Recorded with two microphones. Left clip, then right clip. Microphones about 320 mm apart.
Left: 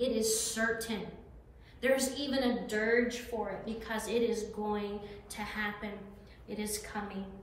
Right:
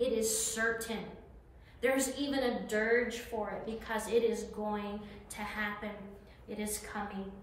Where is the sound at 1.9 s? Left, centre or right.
Centre.